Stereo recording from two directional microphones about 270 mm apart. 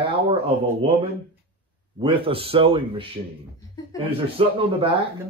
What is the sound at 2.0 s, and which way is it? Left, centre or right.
Speech, centre.